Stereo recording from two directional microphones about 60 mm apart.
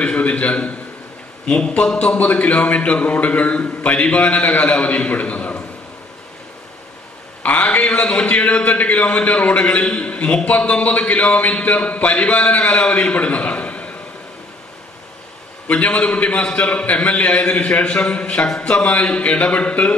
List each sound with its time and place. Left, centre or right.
0.0 s a sound: left
1.5 s a man's voice: centre
7.4 s a man's voice: left
15.7 s a man's voice: left